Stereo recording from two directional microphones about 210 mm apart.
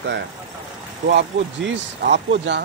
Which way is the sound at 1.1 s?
55° right (ahead or behind).